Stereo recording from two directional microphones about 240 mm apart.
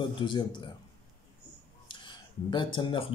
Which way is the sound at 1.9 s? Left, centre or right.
Centre.